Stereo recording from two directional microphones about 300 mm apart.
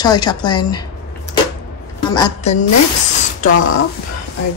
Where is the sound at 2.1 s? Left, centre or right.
Centre.